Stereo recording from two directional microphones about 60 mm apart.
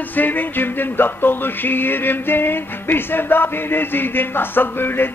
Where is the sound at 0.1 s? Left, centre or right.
Left.